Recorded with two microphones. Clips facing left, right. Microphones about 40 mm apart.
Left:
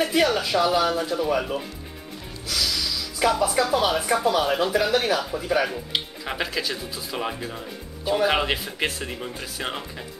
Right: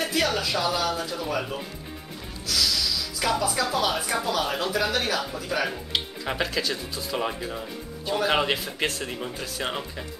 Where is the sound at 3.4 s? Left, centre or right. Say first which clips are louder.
Left 4 dB; centre.